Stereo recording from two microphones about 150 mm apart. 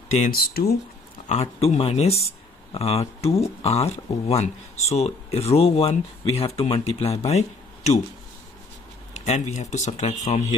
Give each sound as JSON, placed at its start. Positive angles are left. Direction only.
{"t": 0.3, "sound": "speech", "side_deg": 90}
{"t": 1.3, "sound": "speech", "side_deg": 50}
{"t": 9.1, "sound": "speech", "side_deg": 50}